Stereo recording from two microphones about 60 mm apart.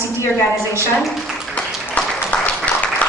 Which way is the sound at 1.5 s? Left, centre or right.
Left.